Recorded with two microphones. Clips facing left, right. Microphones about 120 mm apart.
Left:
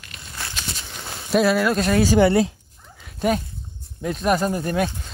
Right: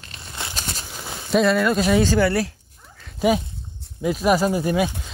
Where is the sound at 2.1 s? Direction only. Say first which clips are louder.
Left 3 dB; 20° left (ahead or behind).